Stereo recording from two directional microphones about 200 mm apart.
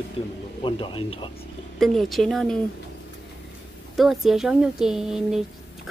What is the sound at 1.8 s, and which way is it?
Speech, centre (ahead or behind).